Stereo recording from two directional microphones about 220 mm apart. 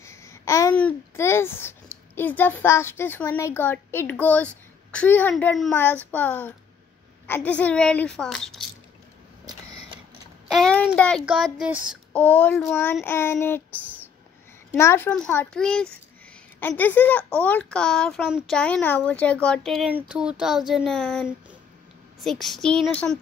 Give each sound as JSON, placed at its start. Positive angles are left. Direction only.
{"t": 0.0, "sound": "speech", "side_deg": 15}
{"t": 10.5, "sound": "a child's voice", "side_deg": 5}
{"t": 14.7, "sound": "speech", "side_deg": 10}